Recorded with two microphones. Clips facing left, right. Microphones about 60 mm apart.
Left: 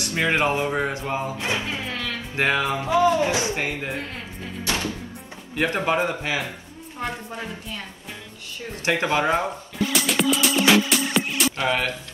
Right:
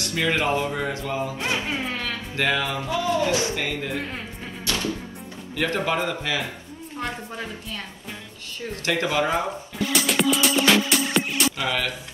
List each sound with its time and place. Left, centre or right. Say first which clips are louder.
0.1 s speech: left 1 dB; left
2.3 s speech: left 2 dB; left
4.6 s music: even; left
5.6 s speech: left 2 dB; left
7.0 s a woman's voice: left 1 dB; centre
8.8 s speech: left 2 dB; left
10.0 s music: right 1 dB; centre
11.5 s speech: left 2 dB; left